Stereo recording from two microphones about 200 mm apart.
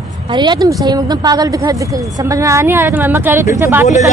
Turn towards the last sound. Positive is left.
turn(degrees=-15)  # may be behind; listen again after turning